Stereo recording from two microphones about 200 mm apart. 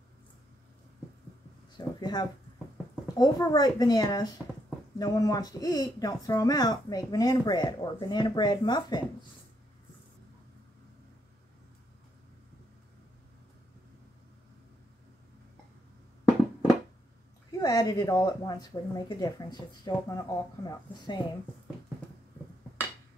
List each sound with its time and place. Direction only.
1.8 s speech: 20° left (ahead or behind)
17.6 s speech: 20° left (ahead or behind)